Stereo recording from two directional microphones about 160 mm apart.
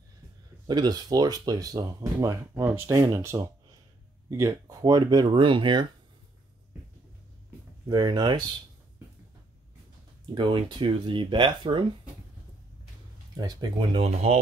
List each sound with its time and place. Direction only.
0.7 s speech: 25° right (ahead or behind)
7.9 s speech: 25° right (ahead or behind)
10.3 s speech: 30° right (ahead or behind)
13.4 s speech: 25° right (ahead or behind)